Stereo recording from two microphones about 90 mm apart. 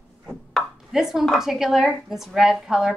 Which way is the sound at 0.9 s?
5° right (ahead or behind).